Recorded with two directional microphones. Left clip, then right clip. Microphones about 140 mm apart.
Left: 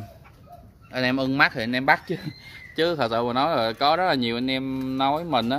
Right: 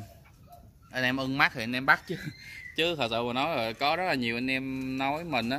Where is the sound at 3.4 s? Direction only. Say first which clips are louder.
Left 7 dB; 15° left (ahead or behind).